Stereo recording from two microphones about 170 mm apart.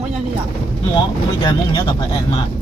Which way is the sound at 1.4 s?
25° left (ahead or behind).